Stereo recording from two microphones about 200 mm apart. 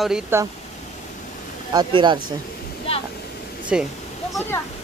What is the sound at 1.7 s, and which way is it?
Speech, 20° right (ahead or behind).